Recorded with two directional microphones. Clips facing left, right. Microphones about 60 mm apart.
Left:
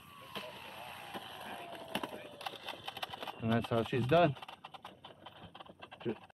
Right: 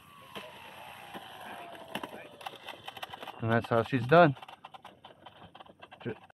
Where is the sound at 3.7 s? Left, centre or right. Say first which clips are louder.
Right 5 dB; right.